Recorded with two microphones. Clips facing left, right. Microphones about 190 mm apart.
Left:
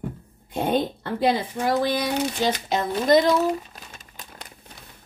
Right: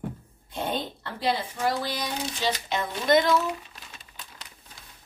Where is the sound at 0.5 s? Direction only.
50° left (ahead or behind).